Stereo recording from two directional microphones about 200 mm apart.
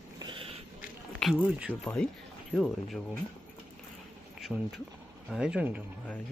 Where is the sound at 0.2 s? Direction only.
25° right (ahead or behind).